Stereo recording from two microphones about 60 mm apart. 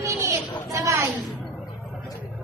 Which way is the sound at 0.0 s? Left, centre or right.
Right.